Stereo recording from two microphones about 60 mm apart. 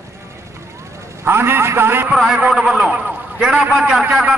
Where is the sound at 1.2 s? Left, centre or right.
Right.